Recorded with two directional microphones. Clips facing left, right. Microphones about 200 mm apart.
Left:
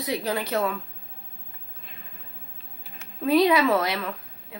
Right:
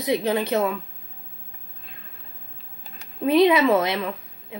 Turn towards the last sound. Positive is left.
turn(degrees=-20)  # may be behind; listen again after turning